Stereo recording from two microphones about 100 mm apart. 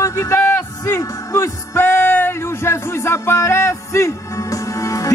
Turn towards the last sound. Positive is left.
turn(degrees=35)  # may be behind; listen again after turning